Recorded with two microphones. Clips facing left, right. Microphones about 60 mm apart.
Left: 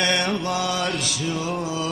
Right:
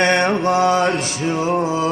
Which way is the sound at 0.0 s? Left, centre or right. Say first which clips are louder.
Right 7 dB; right.